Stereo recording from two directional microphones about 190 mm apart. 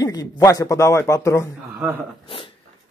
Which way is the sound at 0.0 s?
20° left (ahead or behind).